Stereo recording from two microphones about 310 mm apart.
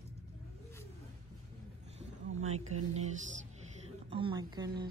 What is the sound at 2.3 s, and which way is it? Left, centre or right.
Speech, right.